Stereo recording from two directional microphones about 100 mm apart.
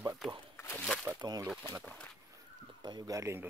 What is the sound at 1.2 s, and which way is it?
Speech, 40° right (ahead or behind).